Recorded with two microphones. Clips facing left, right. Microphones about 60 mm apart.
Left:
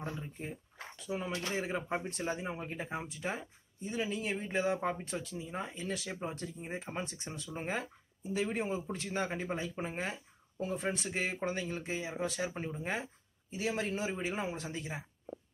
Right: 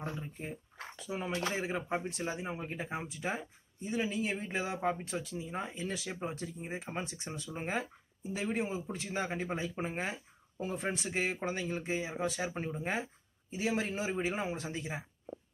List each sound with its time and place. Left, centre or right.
0.2 s speech: centre
1.0 s speech: centre
1.5 s speech: centre
7.5 s speech: centre
9.6 s speech: centre